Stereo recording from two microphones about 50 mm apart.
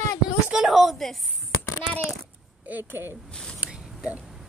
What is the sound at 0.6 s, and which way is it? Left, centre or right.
Speech, centre.